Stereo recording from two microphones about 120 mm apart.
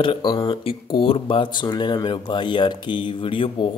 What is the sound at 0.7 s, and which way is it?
Speech, 45° left (ahead or behind).